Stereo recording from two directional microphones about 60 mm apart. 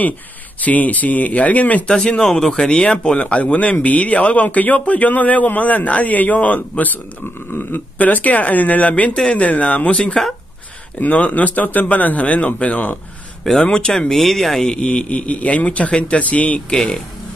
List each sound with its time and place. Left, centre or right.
0.7 s speech: left
1.9 s speech: centre
7.2 s burping: left
8.0 s speech: left
11.0 s speech: left
13.4 s speech: centre
16.7 s speech: centre